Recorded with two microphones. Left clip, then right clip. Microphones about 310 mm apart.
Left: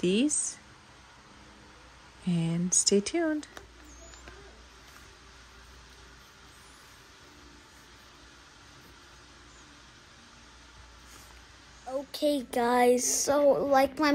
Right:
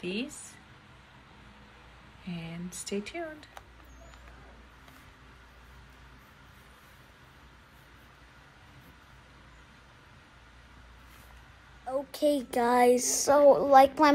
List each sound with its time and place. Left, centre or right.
0.0 s speech: centre
2.2 s speech: centre
11.9 s speech: centre